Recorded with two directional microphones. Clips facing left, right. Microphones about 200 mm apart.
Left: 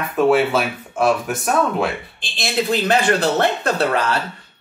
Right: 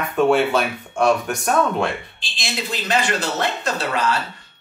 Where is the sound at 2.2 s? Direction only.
60° left (ahead or behind).